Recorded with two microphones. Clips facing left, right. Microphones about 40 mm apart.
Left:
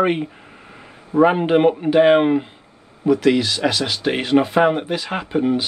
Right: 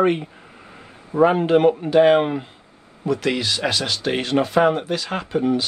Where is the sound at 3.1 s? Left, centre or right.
Centre.